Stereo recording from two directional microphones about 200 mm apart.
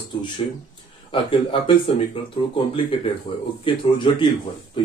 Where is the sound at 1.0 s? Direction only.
25° left (ahead or behind).